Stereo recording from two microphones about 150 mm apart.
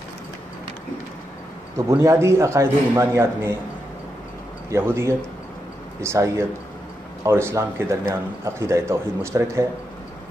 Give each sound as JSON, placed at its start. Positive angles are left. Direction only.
{"t": 1.9, "sound": "a man's voice", "side_deg": -20}
{"t": 4.6, "sound": "a man's voice", "side_deg": -15}